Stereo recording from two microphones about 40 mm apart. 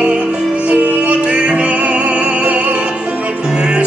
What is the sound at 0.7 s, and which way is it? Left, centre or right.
Music, right.